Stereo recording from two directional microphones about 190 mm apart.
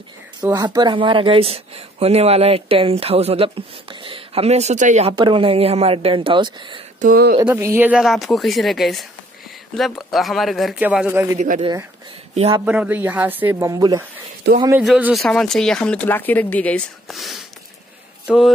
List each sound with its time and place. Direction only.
0.5 s speech: 20° right (ahead or behind); by 5.1 s 40° right (ahead or behind)
5.1 s speech: 25° right (ahead or behind)
7.0 s speech: 50° right (ahead or behind)
7.4 s speech: 10° right (ahead or behind)
11.3 s speech: 45° right (ahead or behind)
12.4 s speech: 30° right (ahead or behind)
12.6 s speech: 5° right (ahead or behind)
14.7 s a man's voice: 5° right (ahead or behind)